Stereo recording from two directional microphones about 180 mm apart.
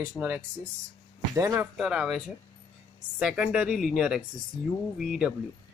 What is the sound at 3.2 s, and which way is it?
Speech, 5° right (ahead or behind).